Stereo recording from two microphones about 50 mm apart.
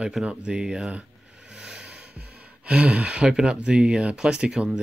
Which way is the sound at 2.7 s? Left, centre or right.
Right.